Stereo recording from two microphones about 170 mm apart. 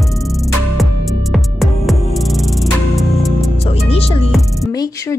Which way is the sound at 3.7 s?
35° left (ahead or behind).